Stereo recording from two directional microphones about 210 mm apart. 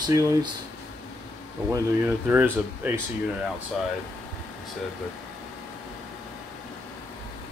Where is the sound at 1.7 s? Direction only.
10° right (ahead or behind).